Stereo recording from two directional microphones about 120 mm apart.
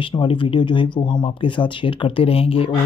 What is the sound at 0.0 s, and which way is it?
Speech, 45° left (ahead or behind).